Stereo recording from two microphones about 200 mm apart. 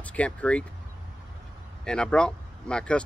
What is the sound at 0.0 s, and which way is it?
Speech, 5° left (ahead or behind).